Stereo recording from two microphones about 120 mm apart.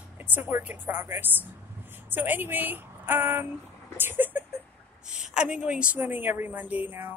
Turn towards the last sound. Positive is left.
turn(degrees=-15)  # may be behind; listen again after turning